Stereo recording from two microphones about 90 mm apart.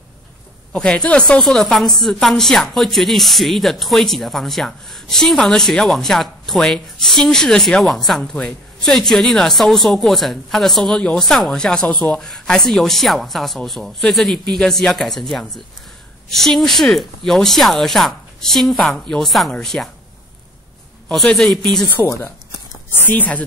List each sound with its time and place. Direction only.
0.7 s speech: 10° left (ahead or behind)
21.1 s speech: 10° left (ahead or behind)
22.0 s speech: 25° left (ahead or behind)